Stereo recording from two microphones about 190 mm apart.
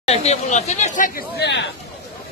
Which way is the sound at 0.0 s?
35° left (ahead or behind).